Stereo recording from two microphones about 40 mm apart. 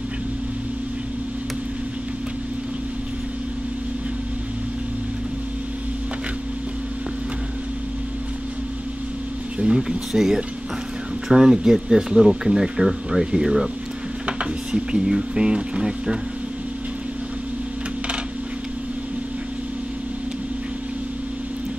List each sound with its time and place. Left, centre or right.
9.6 s speech: right
10.1 s speech: centre
14.2 s speech: right